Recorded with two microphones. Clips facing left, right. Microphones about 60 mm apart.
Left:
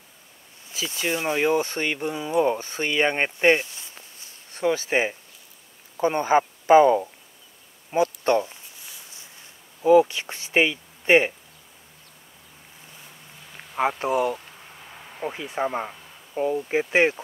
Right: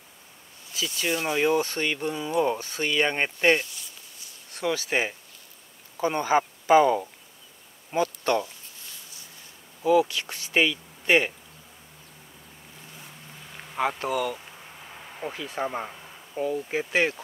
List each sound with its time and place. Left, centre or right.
0.8 s speech: left
3.3 s a sound: centre
4.6 s speech: left
6.0 s speech: left
6.8 s speech: centre
8.2 s speech: left
9.8 s speech: left
13.7 s speech: centre
14.4 s insect: centre
15.3 s speech: centre